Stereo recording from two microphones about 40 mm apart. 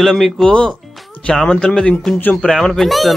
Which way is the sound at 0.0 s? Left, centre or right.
Centre.